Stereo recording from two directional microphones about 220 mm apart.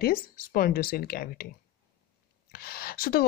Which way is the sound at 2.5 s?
45° left (ahead or behind).